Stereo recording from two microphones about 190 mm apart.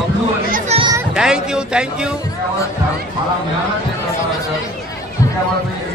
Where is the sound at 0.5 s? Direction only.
35° right (ahead or behind).